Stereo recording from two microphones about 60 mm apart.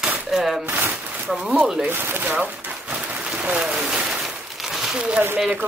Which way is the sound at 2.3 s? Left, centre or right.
Right.